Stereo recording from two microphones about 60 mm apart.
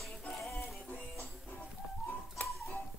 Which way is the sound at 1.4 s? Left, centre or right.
Left.